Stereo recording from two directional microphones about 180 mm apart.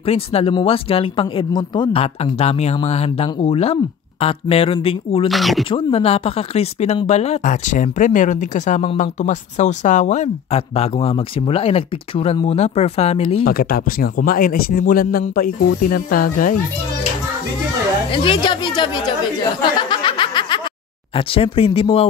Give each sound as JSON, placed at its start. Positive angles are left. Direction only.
{"t": 0.0, "sound": "speech", "side_deg": 35}
{"t": 5.3, "sound": "speech", "side_deg": 0}
{"t": 5.7, "sound": "speech", "side_deg": 30}
{"t": 13.4, "sound": "speech", "side_deg": 55}
{"t": 18.1, "sound": "speech", "side_deg": 30}
{"t": 19.8, "sound": "a sound", "side_deg": 25}
{"t": 21.3, "sound": "speech", "side_deg": 30}